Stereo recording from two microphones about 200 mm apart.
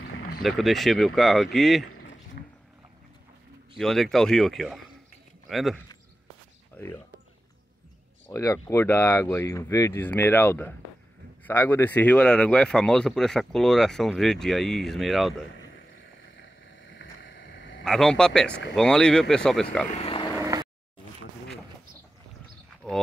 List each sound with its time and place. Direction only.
0.4 s speech: centre (ahead or behind)
1.9 s a sound: 90° left
2.4 s a sound: 45° left (ahead or behind)
3.7 s speech: centre (ahead or behind)
6.7 s a sound: 10° left (ahead or behind)
8.3 s speech: 15° left (ahead or behind)
16.9 s boat: 65° left (ahead or behind)
17.8 s speech: 5° left (ahead or behind)
19.9 s speech: 30° left (ahead or behind)
20.3 s vehicle: 15° right (ahead or behind)
22.8 s speech: centre (ahead or behind)